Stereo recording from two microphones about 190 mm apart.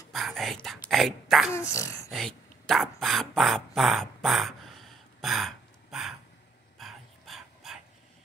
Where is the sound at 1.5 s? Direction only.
15° left (ahead or behind).